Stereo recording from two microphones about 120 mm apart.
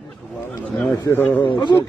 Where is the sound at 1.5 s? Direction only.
40° left (ahead or behind).